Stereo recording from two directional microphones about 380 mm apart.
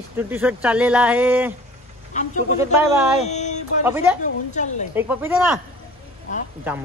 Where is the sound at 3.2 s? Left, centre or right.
Centre.